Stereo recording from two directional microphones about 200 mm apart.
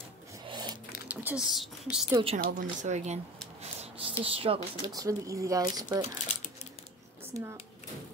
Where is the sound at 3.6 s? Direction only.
35° right (ahead or behind).